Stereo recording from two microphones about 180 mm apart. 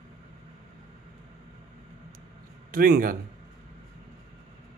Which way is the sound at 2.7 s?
55° right (ahead or behind).